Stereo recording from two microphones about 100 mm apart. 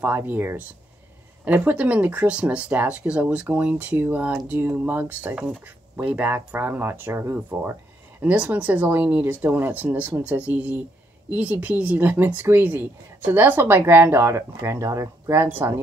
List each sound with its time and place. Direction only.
0.0 s speech: 20° right (ahead or behind)